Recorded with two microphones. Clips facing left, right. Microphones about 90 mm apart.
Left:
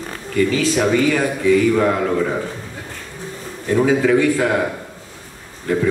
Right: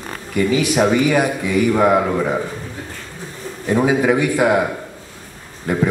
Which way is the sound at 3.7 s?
15° right (ahead or behind).